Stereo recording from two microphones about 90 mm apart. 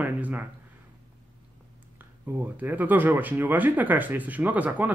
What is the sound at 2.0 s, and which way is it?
Speech, 20° right (ahead or behind).